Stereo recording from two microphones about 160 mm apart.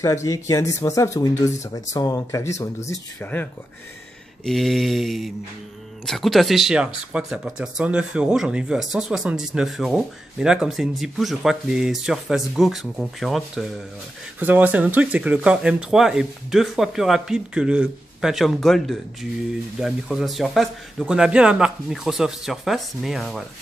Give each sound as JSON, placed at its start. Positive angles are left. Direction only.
{"t": 0.0, "sound": "speech", "side_deg": 20}
{"t": 4.5, "sound": "speech", "side_deg": 0}
{"t": 14.4, "sound": "speech", "side_deg": -10}